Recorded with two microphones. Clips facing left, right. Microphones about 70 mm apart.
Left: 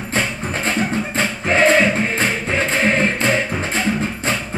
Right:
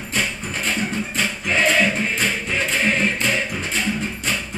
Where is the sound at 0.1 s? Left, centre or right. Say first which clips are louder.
Left 3 dB; left.